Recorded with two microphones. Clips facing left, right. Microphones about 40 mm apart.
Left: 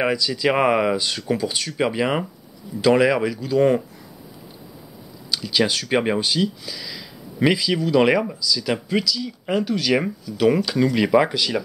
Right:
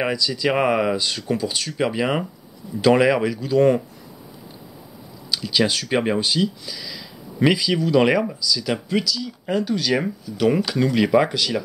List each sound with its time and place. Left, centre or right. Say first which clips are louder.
0.0 s speech: left 1 dB; centre
5.3 s speech: even; centre
10.7 s speech: even; centre